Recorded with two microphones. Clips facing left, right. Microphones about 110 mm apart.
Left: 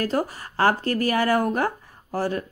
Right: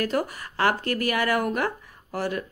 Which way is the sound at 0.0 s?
30° left (ahead or behind).